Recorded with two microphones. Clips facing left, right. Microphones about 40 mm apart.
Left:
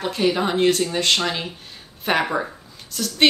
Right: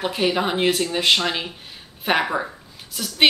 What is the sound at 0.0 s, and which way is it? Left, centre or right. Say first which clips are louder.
Speech: left 1 dB; centre.